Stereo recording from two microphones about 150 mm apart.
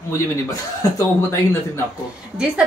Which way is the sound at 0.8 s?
20° left (ahead or behind).